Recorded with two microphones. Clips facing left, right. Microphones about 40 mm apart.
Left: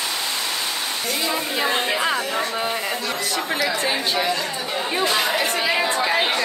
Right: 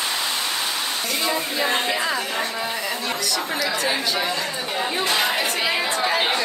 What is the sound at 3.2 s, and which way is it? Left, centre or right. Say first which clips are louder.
Speech: left 1 dB; left.